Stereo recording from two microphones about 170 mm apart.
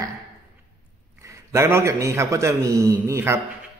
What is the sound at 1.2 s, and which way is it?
A man's voice, 15° right (ahead or behind).